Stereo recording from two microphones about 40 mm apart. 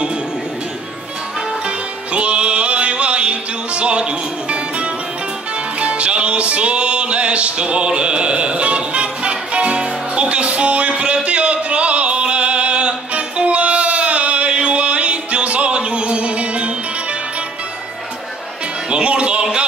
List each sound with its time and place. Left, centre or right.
2.1 s music: right
18.9 s music: right